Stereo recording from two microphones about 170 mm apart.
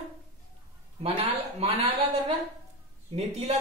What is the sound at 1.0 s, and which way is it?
Speech, 35° right (ahead or behind).